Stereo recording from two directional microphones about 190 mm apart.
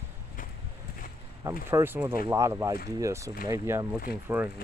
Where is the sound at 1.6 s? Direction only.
10° right (ahead or behind).